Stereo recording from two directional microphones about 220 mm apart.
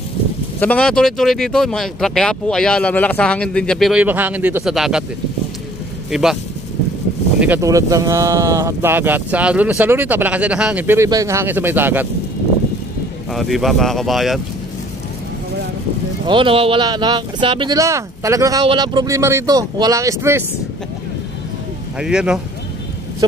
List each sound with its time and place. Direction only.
0.6 s speech: 5° left (ahead or behind)
7.3 s speech: 10° right (ahead or behind)
13.3 s speech: centre (ahead or behind)
16.3 s speech: 25° right (ahead or behind)
22.0 s speech: 5° right (ahead or behind)